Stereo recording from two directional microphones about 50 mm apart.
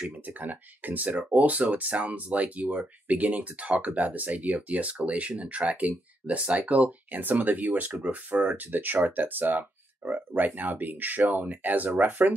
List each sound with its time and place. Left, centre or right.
0.0 s speech: right